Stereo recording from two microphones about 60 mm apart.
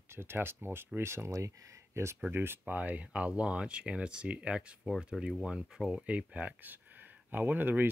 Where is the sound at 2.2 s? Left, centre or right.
Right; by 4.6 s centre.